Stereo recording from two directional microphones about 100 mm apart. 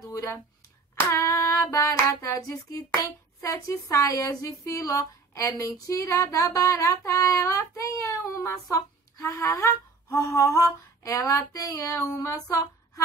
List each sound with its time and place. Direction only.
0.0 s a sound: 30° left (ahead or behind)
1.1 s child singing: 30° left (ahead or behind)
12.2 s female singing: 35° left (ahead or behind)